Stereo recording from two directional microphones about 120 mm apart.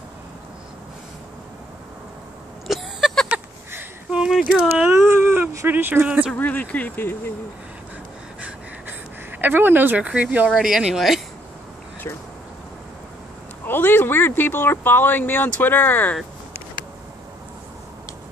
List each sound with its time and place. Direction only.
2.7 s a sound: centre (ahead or behind)
4.5 s speech: 10° right (ahead or behind)
4.9 s speech: 20° right (ahead or behind)
6.3 s speech: 15° left (ahead or behind)
9.4 s speech: 15° right (ahead or behind)
13.7 s speech: 15° left (ahead or behind)